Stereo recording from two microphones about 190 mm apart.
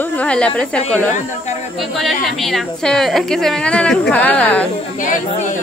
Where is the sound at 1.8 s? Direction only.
Centre (ahead or behind).